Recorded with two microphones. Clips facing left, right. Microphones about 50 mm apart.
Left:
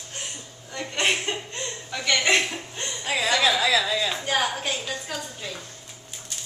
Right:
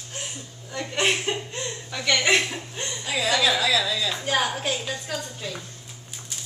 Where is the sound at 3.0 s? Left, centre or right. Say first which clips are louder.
Left 1 dB; left.